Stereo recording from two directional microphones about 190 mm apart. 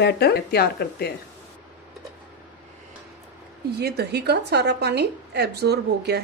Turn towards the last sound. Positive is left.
turn(degrees=-60)  # may be behind; listen again after turning